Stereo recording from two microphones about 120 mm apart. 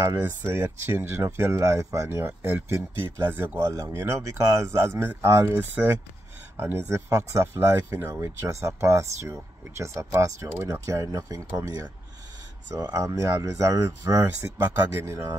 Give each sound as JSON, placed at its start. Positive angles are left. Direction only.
{"t": 0.0, "sound": "speech", "side_deg": -20}